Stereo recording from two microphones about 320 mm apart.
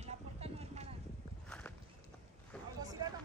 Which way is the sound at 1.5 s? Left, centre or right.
Centre.